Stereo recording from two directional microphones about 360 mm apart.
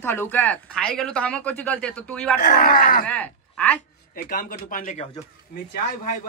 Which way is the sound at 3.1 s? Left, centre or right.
Centre.